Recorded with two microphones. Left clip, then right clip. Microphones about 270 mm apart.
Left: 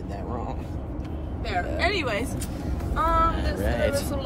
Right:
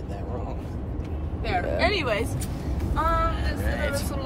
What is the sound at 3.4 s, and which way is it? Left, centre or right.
Speech, left.